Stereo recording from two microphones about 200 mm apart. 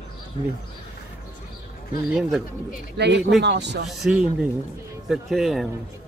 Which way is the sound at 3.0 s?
55° right (ahead or behind).